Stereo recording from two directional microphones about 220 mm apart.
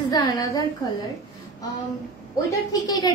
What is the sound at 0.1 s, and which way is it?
Speech, 15° left (ahead or behind).